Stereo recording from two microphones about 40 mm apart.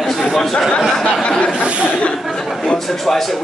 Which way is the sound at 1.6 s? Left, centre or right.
Right.